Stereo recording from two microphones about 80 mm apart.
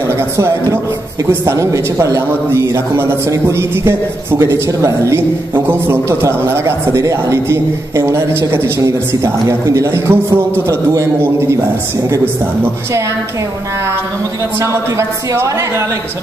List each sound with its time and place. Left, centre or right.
0.4 s a man's voice: right
14.6 s a man's voice: right